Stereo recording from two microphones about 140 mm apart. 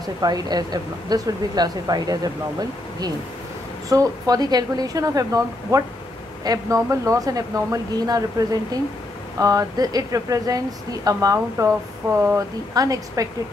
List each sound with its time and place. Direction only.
0.2 s speech: 30° right (ahead or behind)
3.9 s speech: 25° right (ahead or behind)